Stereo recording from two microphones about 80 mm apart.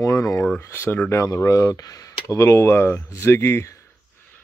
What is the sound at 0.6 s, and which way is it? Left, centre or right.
Speech, left.